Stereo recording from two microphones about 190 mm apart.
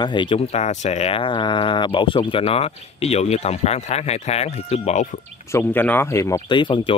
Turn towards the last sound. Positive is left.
turn(degrees=25)  # may be behind; listen again after turning